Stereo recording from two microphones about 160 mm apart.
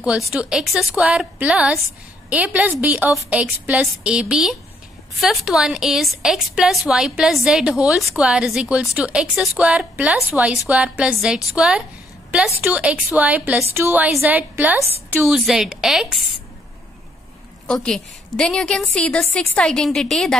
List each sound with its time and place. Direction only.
0.0 s a woman's voice: 5° right (ahead or behind)
17.8 s a woman's voice: 5° left (ahead or behind)